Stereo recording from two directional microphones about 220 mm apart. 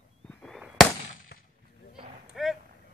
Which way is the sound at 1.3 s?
45° left (ahead or behind).